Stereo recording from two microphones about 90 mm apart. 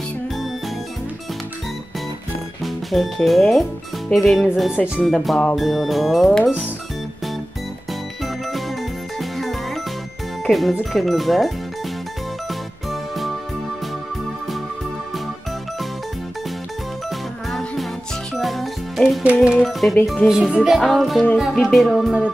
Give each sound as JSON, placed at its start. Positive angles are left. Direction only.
{"t": 2.6, "sound": "speech", "side_deg": 0}
{"t": 8.2, "sound": "music", "side_deg": 0}
{"t": 9.2, "sound": "jingle", "side_deg": 0}
{"t": 10.4, "sound": "speech", "side_deg": 0}
{"t": 12.4, "sound": "music", "side_deg": 0}
{"t": 17.5, "sound": "music", "side_deg": 0}
{"t": 19.4, "sound": "speech", "side_deg": -5}